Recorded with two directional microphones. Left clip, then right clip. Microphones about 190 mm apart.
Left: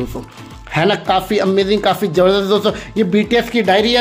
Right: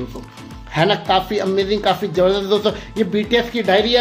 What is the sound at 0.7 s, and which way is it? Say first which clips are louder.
Speech: left 1 dB; 25° left (ahead or behind).